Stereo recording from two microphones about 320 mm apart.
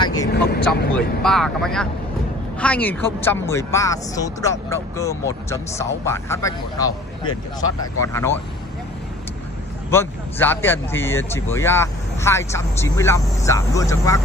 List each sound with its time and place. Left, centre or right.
0.0 s vehicle: centre
0.3 s vehicle: left
1.2 s speech: centre
8.1 s speech: centre
9.8 s speech: centre